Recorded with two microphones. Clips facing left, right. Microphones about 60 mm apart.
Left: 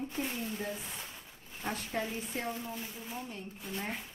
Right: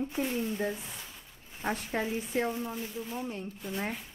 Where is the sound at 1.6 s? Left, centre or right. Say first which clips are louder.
Right 4 dB; right.